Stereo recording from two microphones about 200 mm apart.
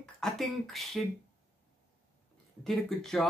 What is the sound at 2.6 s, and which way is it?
Speech, centre (ahead or behind).